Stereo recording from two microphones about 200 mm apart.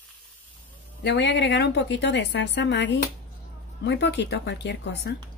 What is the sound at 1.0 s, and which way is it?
A woman's voice, 60° left (ahead or behind).